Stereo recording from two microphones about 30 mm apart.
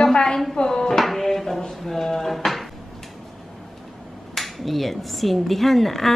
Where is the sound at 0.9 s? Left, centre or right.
Centre.